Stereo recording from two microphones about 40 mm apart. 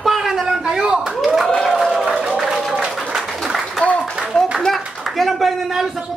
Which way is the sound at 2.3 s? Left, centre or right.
Centre.